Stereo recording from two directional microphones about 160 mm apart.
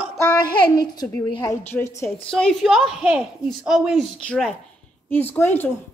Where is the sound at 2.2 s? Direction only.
5° left (ahead or behind).